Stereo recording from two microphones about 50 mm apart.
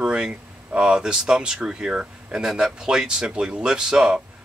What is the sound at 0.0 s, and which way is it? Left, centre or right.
Speech, centre.